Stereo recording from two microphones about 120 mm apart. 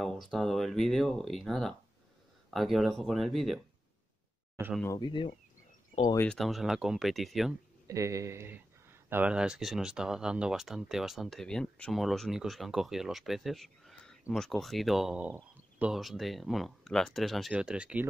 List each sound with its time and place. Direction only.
0.0 s speech: centre (ahead or behind)
5.0 s speech: 45° left (ahead or behind)
6.2 s speech: 5° left (ahead or behind)
7.9 s speech: 25° right (ahead or behind); by 18.0 s 10° right (ahead or behind)